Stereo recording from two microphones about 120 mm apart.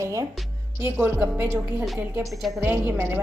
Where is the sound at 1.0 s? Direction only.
15° right (ahead or behind).